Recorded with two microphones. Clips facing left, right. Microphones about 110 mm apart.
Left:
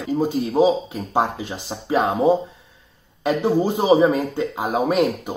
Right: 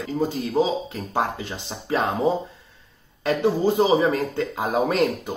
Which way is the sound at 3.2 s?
15° left (ahead or behind).